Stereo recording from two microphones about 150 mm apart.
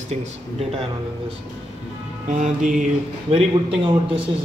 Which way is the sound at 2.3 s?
55° right (ahead or behind).